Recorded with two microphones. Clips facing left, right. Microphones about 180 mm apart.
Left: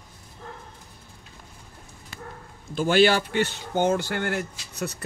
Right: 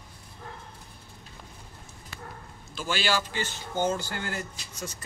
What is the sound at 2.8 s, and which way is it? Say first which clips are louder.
Speech: left 9 dB; 60° left (ahead or behind).